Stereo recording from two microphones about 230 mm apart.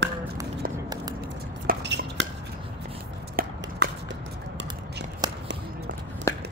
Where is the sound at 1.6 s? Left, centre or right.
Right.